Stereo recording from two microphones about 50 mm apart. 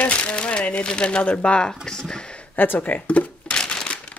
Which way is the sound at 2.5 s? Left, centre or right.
Left.